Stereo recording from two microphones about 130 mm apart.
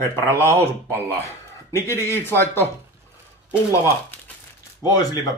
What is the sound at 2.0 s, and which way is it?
Speech, 20° left (ahead or behind).